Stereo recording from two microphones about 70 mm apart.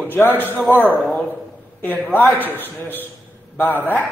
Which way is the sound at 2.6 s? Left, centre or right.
Left.